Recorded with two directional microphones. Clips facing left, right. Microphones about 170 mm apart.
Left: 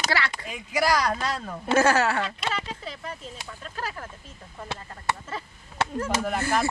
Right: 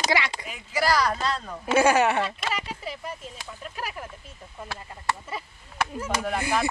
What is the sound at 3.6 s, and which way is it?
Speech, 15° right (ahead or behind).